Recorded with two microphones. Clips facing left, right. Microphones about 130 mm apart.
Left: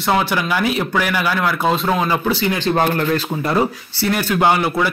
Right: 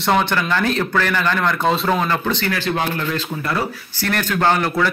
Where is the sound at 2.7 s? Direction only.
50° left (ahead or behind).